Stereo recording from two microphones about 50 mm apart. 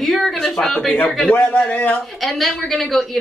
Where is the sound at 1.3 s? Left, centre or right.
Left.